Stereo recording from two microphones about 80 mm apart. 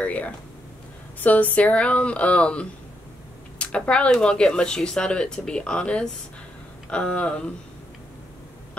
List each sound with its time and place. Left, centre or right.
0.0 s speech: centre